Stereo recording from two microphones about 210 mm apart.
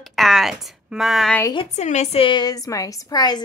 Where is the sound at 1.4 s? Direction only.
25° left (ahead or behind).